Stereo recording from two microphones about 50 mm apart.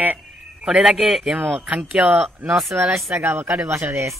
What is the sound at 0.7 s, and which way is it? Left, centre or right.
Speech, centre.